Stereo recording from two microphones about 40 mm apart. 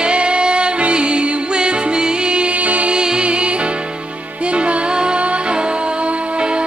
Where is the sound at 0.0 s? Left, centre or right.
Right.